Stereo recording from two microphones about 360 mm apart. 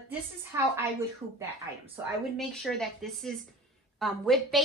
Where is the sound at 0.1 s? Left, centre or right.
Centre.